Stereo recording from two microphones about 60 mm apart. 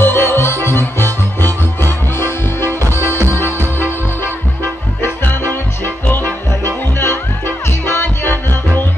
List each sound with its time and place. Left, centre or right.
0.0 s music: left
3.1 s music: right
5.0 s music: left
6.6 s music: left